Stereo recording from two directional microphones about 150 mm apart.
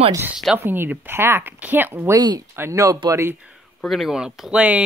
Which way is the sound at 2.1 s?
25° right (ahead or behind).